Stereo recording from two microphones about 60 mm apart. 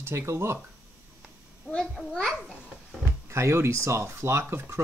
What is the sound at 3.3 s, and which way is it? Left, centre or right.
Speech, right.